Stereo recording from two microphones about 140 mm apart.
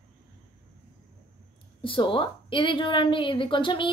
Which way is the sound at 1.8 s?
40° left (ahead or behind).